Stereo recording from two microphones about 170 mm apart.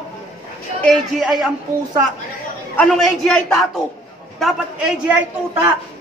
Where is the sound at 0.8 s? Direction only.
Centre (ahead or behind).